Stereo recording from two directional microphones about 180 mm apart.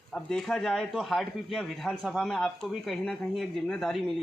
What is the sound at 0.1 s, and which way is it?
A man's voice, 5° left (ahead or behind).